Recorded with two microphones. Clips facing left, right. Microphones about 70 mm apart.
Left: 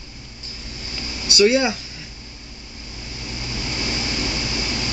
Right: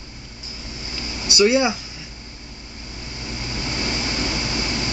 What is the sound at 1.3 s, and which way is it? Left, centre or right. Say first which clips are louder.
Speech: even; centre.